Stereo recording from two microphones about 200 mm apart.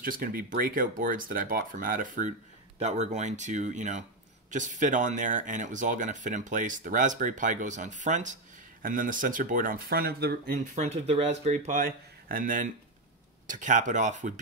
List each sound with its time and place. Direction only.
0.0 s speech: 45° right (ahead or behind)